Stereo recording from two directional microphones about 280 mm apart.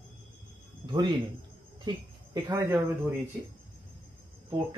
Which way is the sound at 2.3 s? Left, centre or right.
Centre.